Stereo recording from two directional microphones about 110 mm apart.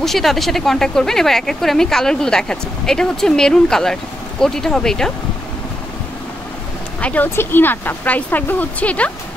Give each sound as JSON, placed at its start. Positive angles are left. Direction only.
{"t": 0.0, "sound": "speech", "side_deg": 0}
{"t": 7.0, "sound": "speech", "side_deg": 15}